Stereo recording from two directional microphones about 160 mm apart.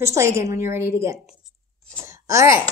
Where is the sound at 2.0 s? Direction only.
20° right (ahead or behind).